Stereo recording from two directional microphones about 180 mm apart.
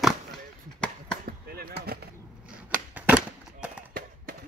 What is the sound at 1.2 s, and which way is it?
Basketball bounce, 55° right (ahead or behind).